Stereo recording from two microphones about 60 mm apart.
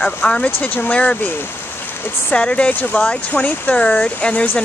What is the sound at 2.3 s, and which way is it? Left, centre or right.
Speech, centre.